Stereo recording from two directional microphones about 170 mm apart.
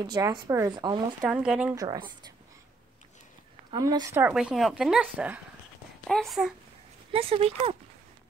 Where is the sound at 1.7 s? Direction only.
25° right (ahead or behind).